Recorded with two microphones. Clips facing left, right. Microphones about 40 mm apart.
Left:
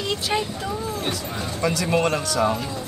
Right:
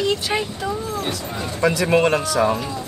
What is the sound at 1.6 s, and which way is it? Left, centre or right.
Speech, right.